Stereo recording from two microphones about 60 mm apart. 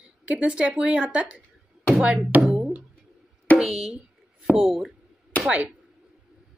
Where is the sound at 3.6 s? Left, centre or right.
Centre.